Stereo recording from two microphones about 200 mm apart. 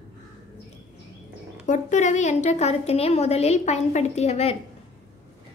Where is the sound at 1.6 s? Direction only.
40° left (ahead or behind).